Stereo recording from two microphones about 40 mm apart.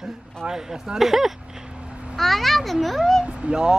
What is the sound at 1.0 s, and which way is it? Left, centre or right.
Speech, centre.